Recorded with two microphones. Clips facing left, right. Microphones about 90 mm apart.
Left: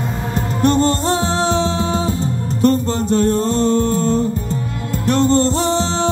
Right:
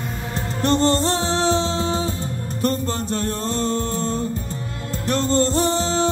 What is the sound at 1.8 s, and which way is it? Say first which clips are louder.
Music: left 4 dB; 30° left (ahead or behind).